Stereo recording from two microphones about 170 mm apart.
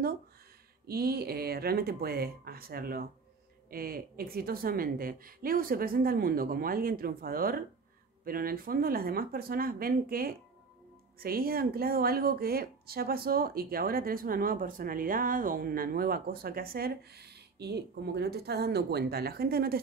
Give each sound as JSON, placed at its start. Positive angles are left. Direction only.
{"t": 0.8, "sound": "speech", "side_deg": -65}